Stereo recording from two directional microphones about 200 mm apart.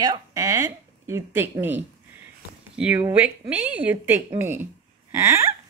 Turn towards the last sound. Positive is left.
turn(degrees=-15)  # may be behind; listen again after turning